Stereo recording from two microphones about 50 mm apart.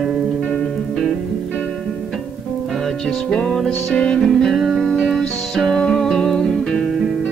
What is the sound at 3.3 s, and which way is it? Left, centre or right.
Music, centre.